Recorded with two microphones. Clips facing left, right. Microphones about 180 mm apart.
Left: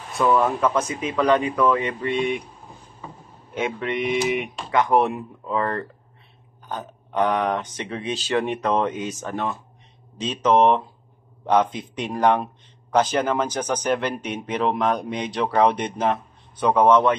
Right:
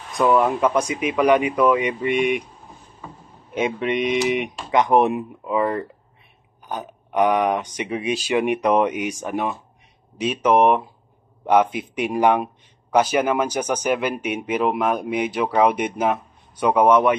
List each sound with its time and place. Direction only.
0.2 s speech: 15° right (ahead or behind)
3.5 s speech: 20° right (ahead or behind)